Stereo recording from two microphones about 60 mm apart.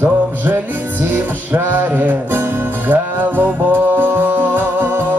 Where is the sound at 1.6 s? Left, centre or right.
Right.